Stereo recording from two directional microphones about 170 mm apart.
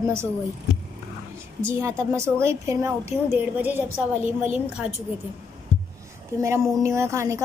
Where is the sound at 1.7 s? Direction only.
15° right (ahead or behind).